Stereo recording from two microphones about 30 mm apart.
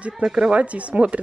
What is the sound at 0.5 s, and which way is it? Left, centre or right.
Speech, right.